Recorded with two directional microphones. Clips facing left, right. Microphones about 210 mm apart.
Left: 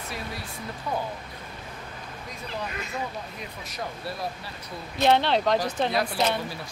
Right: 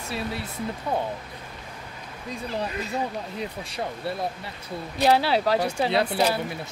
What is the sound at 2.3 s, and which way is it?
Speech, 30° right (ahead or behind).